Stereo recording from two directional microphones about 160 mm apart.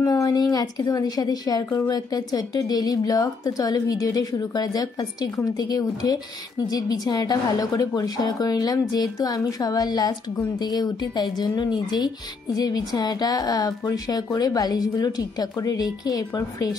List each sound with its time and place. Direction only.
0.0 s speech: 20° left (ahead or behind)